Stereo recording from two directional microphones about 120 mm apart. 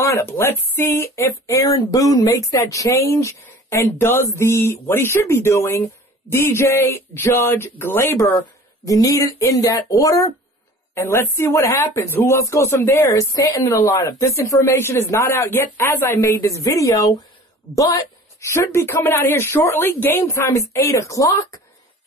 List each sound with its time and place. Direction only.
0.0 s speech: 20° left (ahead or behind)